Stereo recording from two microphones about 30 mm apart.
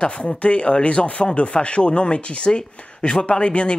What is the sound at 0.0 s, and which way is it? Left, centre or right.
Speech, left.